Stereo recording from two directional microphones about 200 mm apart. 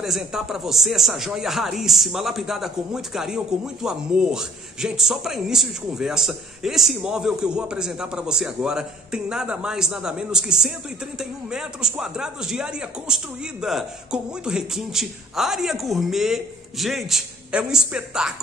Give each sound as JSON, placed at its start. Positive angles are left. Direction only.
{"t": 0.0, "sound": "speech", "side_deg": 0}